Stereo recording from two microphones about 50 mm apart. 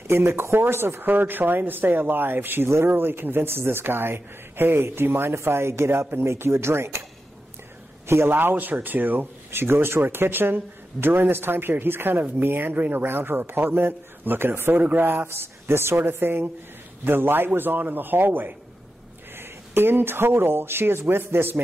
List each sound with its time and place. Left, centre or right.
0.1 s speech: right
8.1 s speech: right
9.5 s speech: right
14.8 s speech: right